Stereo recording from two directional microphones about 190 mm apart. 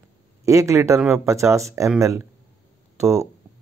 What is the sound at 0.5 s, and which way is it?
Speech, 15° right (ahead or behind).